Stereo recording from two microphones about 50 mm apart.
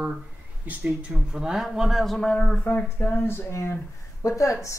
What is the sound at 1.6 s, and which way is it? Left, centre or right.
Speech, centre.